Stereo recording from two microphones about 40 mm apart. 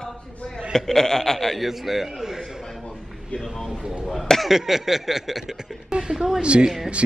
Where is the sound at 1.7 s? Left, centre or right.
Centre.